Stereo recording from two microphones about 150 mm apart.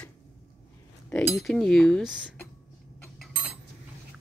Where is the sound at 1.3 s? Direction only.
5° left (ahead or behind).